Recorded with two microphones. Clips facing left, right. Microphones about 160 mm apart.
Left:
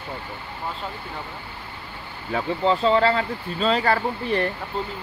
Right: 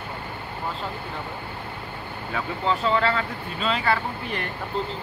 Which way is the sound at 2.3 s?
30° left (ahead or behind).